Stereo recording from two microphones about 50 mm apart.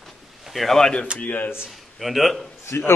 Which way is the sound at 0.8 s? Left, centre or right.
Centre.